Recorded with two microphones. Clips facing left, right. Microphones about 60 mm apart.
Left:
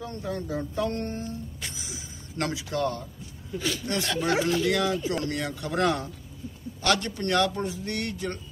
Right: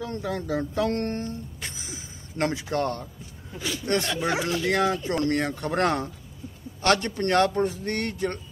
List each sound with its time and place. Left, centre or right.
0.0 s speech: right
1.6 s a sound: right
2.5 s a man's voice: right
3.5 s speech: centre
4.6 s speech: right
4.9 s speech: centre
5.3 s a man's voice: right